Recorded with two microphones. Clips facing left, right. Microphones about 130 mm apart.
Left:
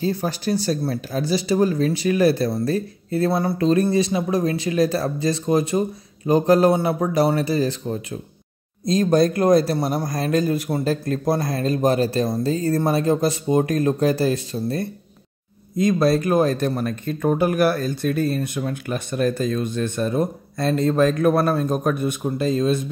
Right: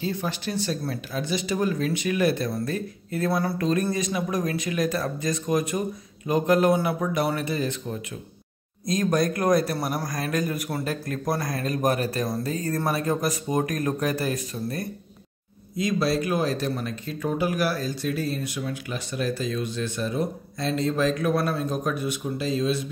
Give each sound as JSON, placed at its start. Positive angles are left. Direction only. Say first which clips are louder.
{"t": 0.0, "sound": "speech", "louder": "left 5 dB", "side_deg": 40}
{"t": 15.7, "sound": "speech", "louder": "left 6 dB", "side_deg": 50}